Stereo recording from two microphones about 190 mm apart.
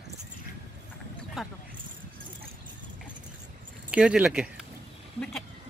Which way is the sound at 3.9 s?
5° right (ahead or behind).